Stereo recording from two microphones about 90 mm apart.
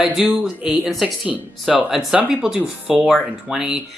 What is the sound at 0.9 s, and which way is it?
Speech, centre (ahead or behind).